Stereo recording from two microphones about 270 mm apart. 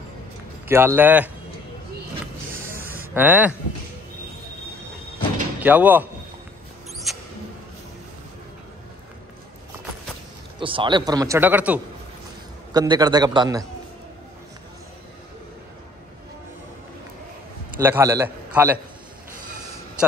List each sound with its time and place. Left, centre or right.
0.7 s a man's voice: centre
3.2 s a man's voice: centre
5.6 s a man's voice: centre
7.1 s mouse: centre
10.6 s a man's voice: centre
17.7 s a man's voice: centre